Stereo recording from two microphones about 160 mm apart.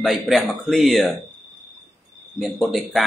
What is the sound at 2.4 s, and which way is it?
Speech, centre (ahead or behind).